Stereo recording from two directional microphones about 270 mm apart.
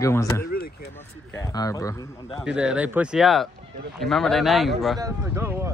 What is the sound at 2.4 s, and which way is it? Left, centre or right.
Speech, centre.